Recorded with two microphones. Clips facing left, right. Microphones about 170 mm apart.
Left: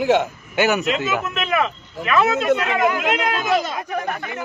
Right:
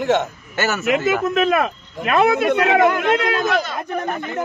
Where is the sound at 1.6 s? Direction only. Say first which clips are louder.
Right 1 dB; 55° right (ahead or behind).